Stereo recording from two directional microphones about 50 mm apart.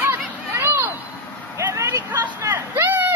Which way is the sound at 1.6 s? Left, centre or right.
Right.